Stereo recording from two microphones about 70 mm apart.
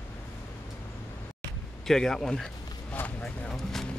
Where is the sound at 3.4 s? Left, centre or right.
Centre.